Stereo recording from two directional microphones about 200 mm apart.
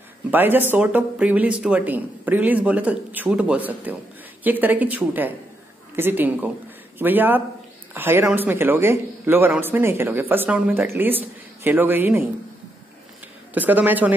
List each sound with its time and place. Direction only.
0.3 s a man's voice: 10° right (ahead or behind)
13.6 s a man's voice: 10° right (ahead or behind)